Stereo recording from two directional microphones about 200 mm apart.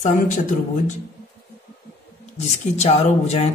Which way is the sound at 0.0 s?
40° left (ahead or behind).